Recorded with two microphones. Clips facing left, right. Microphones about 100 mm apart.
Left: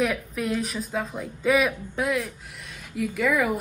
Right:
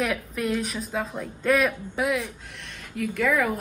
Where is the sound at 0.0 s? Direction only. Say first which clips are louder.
Left 1 dB; centre (ahead or behind).